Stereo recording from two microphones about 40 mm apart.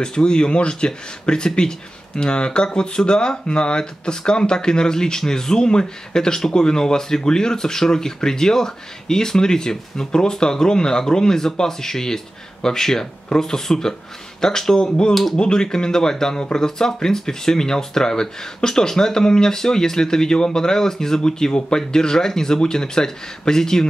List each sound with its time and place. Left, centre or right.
0.0 s speech: left